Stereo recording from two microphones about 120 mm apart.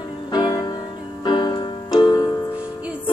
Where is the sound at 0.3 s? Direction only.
35° left (ahead or behind).